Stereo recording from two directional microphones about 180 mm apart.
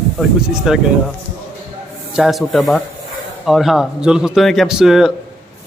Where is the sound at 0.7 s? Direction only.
Centre (ahead or behind).